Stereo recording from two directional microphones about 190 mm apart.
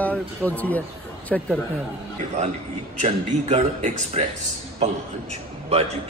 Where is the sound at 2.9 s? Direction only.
35° right (ahead or behind).